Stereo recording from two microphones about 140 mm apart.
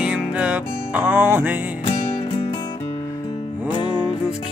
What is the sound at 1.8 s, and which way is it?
Music, 35° left (ahead or behind).